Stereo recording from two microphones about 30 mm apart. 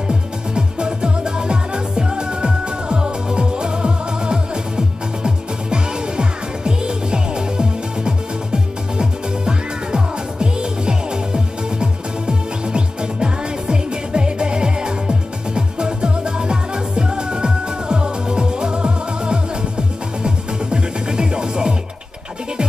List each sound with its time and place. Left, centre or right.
0.6 s music: right
9.5 s music: right